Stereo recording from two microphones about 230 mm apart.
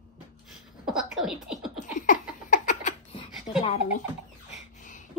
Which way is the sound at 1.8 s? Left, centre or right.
Left.